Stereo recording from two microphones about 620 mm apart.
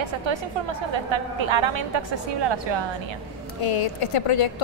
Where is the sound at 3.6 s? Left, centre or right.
Left.